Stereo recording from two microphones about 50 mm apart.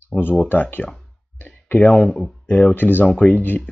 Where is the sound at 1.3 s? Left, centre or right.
Left.